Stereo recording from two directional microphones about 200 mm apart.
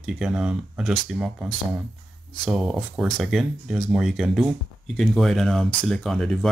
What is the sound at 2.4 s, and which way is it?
Speech, 5° right (ahead or behind).